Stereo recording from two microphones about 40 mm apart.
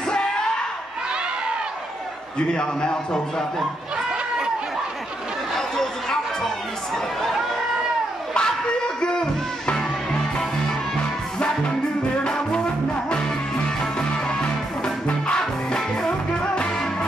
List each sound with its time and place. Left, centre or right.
2.3 s a man's voice: left
5.6 s chatter: centre
8.4 s music: left
12.3 s music: centre
13.9 s music: centre